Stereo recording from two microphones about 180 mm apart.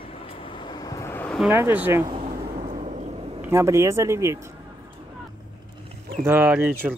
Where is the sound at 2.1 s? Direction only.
35° right (ahead or behind).